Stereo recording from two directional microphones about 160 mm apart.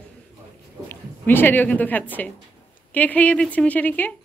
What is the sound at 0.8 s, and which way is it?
A woman's voice, 15° left (ahead or behind).